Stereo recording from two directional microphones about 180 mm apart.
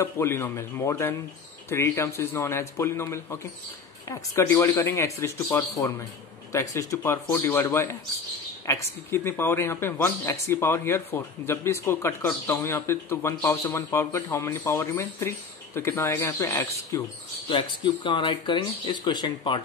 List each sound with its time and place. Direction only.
0.0 s speech: 15° left (ahead or behind)